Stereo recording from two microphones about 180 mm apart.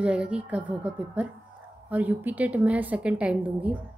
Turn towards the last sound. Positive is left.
turn(degrees=-10)  # may be behind; listen again after turning